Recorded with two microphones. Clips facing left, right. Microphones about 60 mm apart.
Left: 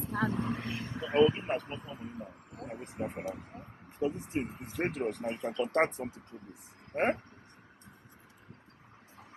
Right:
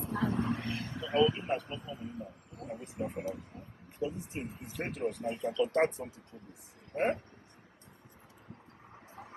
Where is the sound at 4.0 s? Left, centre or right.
Left.